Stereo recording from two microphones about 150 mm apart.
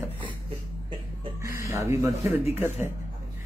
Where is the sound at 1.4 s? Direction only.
20° right (ahead or behind).